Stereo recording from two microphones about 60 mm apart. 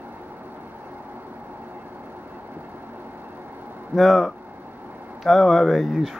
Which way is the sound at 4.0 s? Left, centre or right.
Centre.